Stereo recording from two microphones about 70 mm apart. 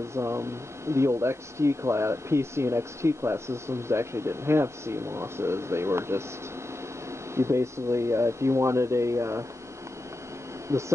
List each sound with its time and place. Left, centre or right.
0.1 s speech: right
7.3 s speech: right
10.7 s speech: right